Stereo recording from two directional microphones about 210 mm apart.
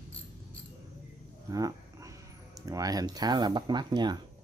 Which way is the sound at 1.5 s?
15° right (ahead or behind).